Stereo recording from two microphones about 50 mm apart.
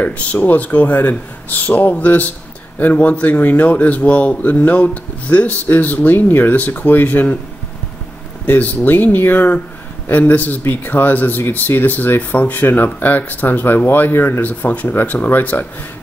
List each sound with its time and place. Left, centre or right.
0.0 s a man's voice: left
8.5 s a man's voice: left
14.4 s a man's voice: left